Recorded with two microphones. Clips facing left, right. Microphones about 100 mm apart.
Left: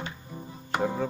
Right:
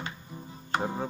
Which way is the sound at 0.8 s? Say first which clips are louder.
Left 4 dB; 20° right (ahead or behind).